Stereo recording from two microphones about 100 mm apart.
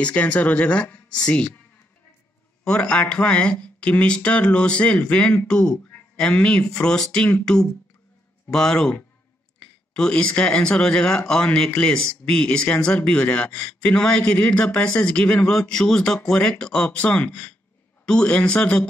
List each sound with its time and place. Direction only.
0.0 s speech: 15° left (ahead or behind)
2.6 s speech: 10° left (ahead or behind)